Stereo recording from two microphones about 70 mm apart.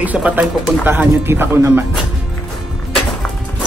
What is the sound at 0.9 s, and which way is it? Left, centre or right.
Speech, right.